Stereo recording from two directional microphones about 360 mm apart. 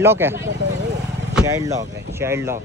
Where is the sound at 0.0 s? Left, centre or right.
Centre.